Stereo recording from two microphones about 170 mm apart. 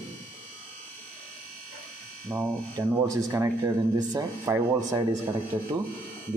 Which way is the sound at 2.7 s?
20° right (ahead or behind).